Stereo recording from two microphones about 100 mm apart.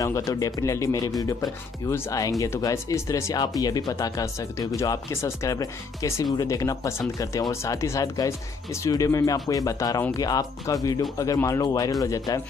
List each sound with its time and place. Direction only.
0.0 s speech: 35° left (ahead or behind)